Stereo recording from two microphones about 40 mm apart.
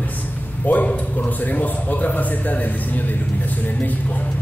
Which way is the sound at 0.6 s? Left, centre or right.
Left.